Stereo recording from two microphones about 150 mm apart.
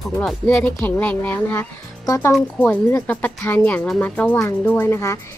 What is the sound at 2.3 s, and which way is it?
Speech, 10° left (ahead or behind).